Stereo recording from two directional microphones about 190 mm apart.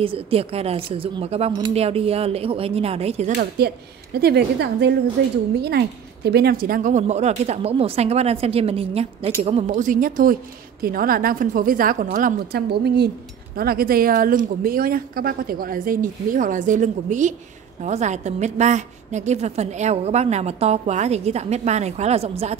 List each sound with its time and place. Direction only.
0.0 s a woman's voice: 30° right (ahead or behind)
3.3 s a woman's voice: 55° right (ahead or behind); by 22.6 s 35° right (ahead or behind)